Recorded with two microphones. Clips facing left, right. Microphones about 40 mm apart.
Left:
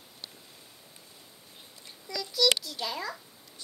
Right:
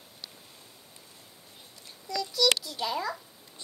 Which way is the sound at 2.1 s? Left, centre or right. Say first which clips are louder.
Right 1 dB; centre.